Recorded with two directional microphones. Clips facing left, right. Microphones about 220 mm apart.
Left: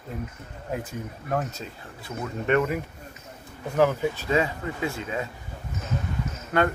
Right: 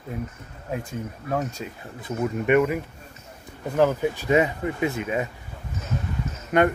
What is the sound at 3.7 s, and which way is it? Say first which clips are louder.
Speech: right 1 dB; 15° right (ahead or behind).